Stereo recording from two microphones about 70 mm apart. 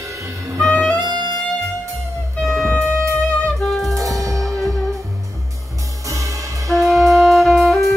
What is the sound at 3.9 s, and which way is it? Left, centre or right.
Music, right.